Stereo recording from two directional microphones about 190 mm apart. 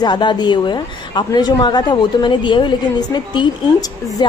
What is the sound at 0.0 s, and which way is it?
A woman's voice, 25° left (ahead or behind).